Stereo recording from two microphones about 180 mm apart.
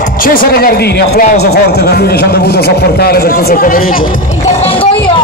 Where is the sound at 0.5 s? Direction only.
60° left (ahead or behind).